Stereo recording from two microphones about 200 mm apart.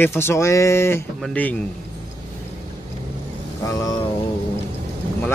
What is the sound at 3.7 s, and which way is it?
Speech, 15° left (ahead or behind).